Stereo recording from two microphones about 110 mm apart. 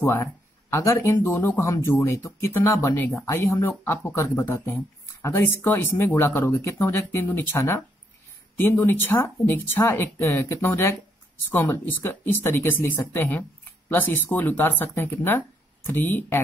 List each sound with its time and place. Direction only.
0.0 s speech: 20° left (ahead or behind)